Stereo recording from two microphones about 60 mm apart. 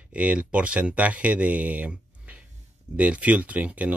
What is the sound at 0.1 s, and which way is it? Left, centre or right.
Speech, right.